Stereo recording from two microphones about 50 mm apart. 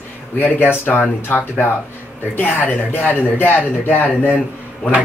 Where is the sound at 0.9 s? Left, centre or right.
Centre.